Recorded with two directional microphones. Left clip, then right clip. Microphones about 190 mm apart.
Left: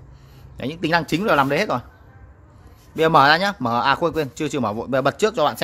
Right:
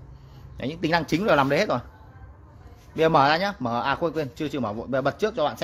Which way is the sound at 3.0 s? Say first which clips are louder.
Left 5 dB; 15° left (ahead or behind).